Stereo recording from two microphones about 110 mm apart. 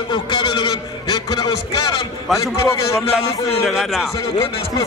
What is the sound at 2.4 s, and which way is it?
Speech, 25° left (ahead or behind).